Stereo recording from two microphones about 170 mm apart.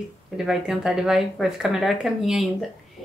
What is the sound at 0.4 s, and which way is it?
Speech, 5° right (ahead or behind).